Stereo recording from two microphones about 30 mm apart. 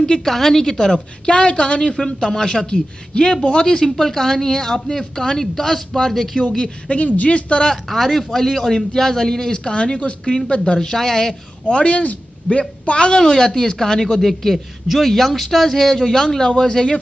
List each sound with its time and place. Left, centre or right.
0.2 s a man's voice: centre
1.2 s a woman's voice: left
2.0 s speech: left
3.8 s a man's voice: centre
7.2 s speech: left
7.9 s a man's voice: centre
8.7 s speech: centre
10.8 s a man's voice: centre
11.7 s a woman's voice: left
13.2 s speech: left
14.2 s a man's voice: centre; by 16.9 s left